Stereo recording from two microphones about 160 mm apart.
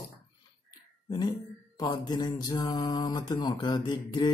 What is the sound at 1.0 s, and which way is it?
Speech, 25° left (ahead or behind).